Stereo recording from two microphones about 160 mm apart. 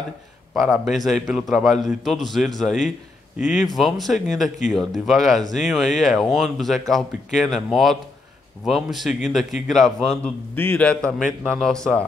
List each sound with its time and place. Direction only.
0.6 s a man's voice: centre (ahead or behind)
3.3 s speech: 50° left (ahead or behind)
3.6 s a man's voice: centre (ahead or behind)